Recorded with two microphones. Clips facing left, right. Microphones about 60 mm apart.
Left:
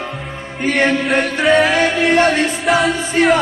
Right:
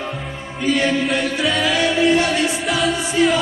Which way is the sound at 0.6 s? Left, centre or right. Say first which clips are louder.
Left 3 dB; left.